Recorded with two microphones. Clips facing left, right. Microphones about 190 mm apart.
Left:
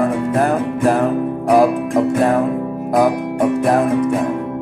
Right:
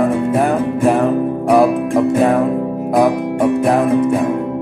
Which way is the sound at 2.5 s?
20° right (ahead or behind).